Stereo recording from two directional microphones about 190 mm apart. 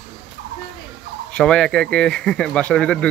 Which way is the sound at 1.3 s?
5° left (ahead or behind).